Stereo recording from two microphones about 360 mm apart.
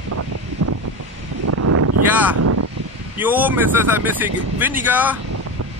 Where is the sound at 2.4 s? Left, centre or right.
Right.